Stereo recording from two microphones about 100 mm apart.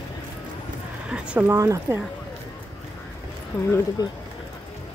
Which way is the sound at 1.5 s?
25° right (ahead or behind).